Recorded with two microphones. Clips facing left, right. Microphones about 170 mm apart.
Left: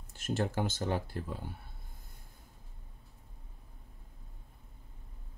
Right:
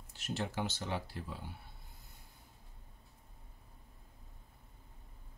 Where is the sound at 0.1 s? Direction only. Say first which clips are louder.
Left 6 dB; 50° left (ahead or behind).